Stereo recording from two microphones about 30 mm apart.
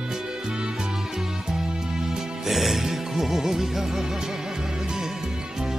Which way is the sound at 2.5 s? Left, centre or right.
Centre.